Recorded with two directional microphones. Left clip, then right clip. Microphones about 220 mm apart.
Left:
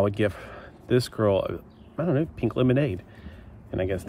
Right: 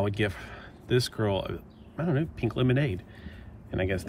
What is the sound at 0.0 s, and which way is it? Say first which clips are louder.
Speech: left 5 dB; 15° left (ahead or behind).